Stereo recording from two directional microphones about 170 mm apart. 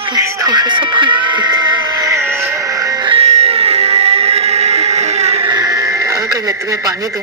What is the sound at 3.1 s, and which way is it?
Music, 40° right (ahead or behind).